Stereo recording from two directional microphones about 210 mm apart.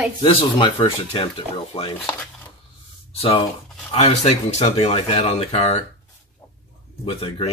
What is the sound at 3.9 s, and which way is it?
Speech, 30° left (ahead or behind).